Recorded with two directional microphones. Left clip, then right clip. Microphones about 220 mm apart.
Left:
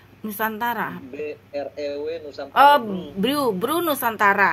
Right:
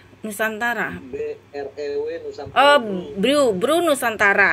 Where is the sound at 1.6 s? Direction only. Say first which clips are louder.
Even; 20° right (ahead or behind).